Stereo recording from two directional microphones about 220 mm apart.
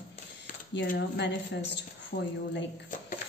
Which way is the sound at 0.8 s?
50° left (ahead or behind).